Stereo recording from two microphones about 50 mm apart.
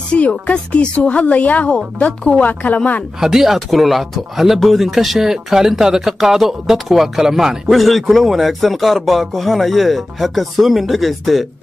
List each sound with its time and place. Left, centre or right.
0.1 s a woman's voice: left
3.2 s speech: centre